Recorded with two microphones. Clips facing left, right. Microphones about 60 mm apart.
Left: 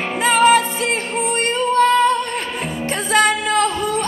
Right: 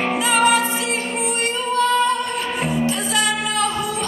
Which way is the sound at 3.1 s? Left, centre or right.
Left.